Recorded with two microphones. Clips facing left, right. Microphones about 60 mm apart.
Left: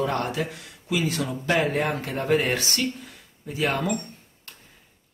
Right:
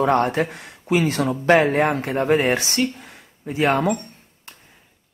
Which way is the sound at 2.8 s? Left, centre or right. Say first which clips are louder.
Right 5 dB; right.